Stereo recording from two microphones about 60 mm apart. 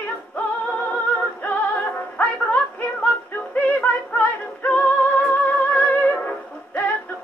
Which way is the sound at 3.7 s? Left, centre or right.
Left.